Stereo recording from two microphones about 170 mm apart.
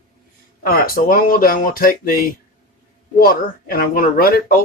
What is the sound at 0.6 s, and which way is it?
A man's voice, 60° left (ahead or behind).